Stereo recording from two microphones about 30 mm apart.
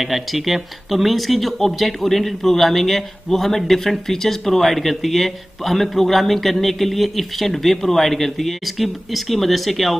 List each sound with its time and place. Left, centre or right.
0.0 s speech: centre